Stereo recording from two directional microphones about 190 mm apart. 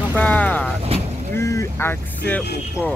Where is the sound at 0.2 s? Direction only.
10° left (ahead or behind).